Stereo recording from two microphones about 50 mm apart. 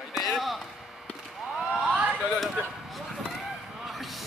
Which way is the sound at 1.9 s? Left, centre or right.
Right.